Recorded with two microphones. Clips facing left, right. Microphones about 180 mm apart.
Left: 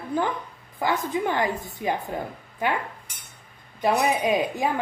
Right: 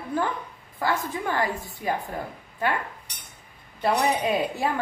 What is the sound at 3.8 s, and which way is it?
Speech, 15° left (ahead or behind).